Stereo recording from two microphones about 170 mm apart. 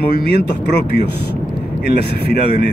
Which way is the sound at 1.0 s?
75° left (ahead or behind).